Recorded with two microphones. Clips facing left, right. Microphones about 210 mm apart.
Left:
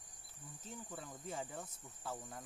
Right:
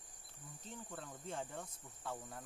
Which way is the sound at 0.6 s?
5° left (ahead or behind).